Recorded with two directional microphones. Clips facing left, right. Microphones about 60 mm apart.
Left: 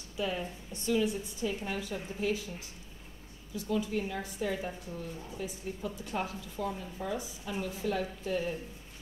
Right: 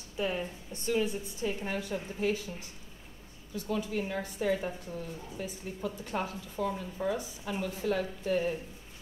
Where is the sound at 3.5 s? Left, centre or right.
Right.